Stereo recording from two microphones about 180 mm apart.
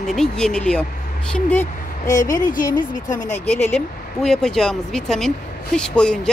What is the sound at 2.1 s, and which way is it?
Speech, 20° left (ahead or behind).